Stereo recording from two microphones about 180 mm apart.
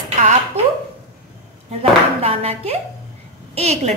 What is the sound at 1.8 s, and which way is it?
A woman's voice, 35° right (ahead or behind).